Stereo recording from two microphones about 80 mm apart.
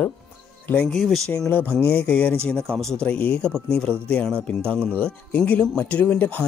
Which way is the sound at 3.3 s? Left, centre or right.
Centre.